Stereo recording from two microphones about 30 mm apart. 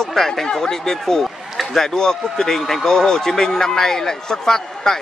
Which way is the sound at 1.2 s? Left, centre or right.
Centre.